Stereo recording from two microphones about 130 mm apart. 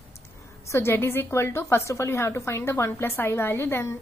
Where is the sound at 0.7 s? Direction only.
20° left (ahead or behind).